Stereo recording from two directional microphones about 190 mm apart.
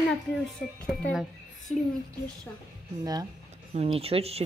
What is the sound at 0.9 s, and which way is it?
Speech, centre (ahead or behind).